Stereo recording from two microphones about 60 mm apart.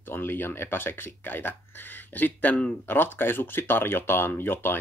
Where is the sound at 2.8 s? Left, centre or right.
Left.